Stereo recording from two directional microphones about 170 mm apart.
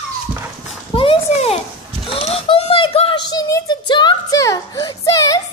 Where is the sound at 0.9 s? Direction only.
35° left (ahead or behind).